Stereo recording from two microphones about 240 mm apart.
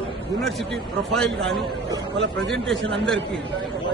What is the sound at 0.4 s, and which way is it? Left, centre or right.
A man's voice, centre.